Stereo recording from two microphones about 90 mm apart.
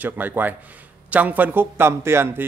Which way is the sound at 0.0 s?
20° right (ahead or behind).